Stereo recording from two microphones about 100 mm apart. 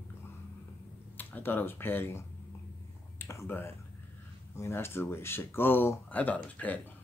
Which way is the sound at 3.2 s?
25° left (ahead or behind).